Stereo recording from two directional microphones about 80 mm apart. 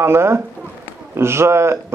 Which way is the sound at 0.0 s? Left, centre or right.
Right.